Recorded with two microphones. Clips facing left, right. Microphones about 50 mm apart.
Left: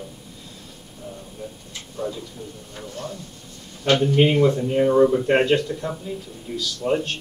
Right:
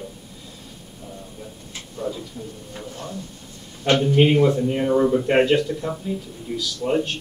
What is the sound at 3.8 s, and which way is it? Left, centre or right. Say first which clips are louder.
A man's voice: even; centre.